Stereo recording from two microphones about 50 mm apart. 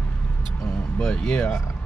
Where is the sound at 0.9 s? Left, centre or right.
Centre.